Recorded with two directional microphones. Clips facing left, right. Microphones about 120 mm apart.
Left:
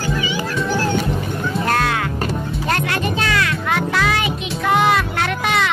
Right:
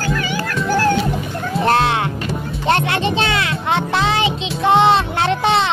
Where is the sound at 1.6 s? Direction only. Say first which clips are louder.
Right 5 dB; 25° right (ahead or behind).